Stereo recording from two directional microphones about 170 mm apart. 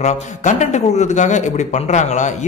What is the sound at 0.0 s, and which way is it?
A man's voice, 45° left (ahead or behind).